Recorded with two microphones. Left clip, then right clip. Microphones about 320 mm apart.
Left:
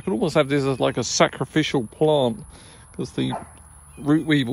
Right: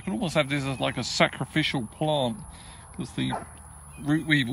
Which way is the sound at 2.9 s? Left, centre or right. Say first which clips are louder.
Left 4 dB; left.